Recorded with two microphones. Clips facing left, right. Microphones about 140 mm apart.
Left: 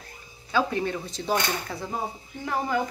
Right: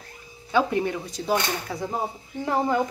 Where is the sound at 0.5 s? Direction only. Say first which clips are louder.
Right 3 dB; 20° right (ahead or behind).